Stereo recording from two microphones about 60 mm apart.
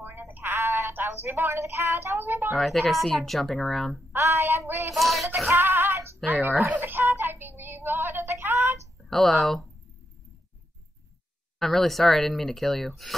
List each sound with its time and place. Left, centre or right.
0.0 s a sound: right
0.9 s speech: right
2.5 s speech: centre
4.1 s child singing: right
4.9 s speech: centre
5.5 s music: right
6.2 s speech: right
6.8 s child singing: right
9.1 s speech: centre
11.6 s speech: centre